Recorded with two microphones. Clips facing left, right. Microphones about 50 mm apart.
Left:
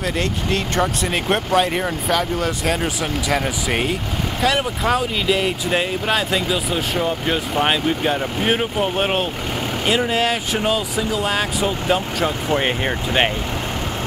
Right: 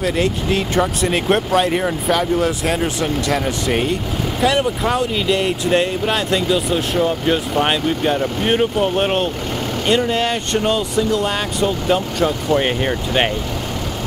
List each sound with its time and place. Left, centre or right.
0.2 s speech: centre